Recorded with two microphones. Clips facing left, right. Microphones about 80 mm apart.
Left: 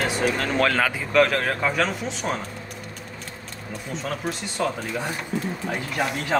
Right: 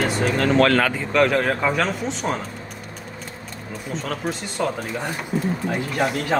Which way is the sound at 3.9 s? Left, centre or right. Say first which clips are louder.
Right 2 dB; centre.